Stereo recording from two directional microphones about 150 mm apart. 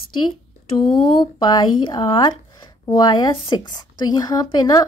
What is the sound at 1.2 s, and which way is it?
Speech, 30° left (ahead or behind).